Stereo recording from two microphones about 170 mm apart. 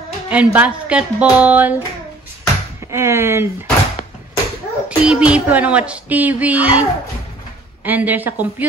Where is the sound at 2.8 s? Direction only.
15° right (ahead or behind).